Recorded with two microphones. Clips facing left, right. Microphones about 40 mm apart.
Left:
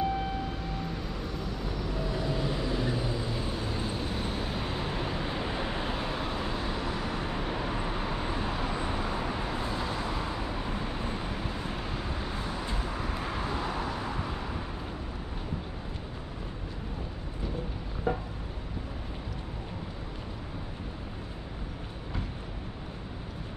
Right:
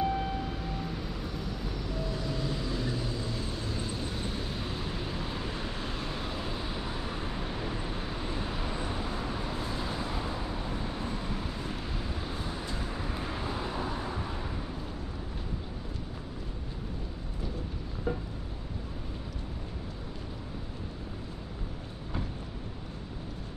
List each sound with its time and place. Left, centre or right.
0.0 s vehicle: centre
7.2 s vehicle: left; by 10.0 s centre
10.7 s vehicle: left; by 13.7 s centre
18.1 s a sound: left